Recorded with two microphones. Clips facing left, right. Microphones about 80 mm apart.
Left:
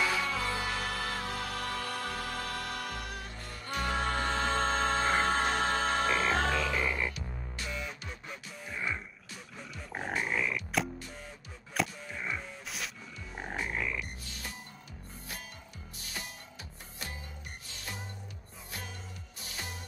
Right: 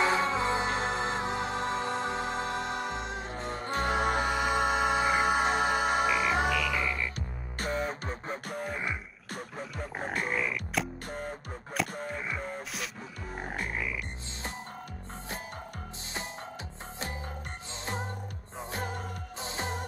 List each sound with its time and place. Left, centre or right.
0.0 s music: right
6.5 s music: left
7.2 s music: right
9.9 s music: centre
11.1 s music: right
13.4 s frog: centre
18.7 s music: right
19.4 s music: right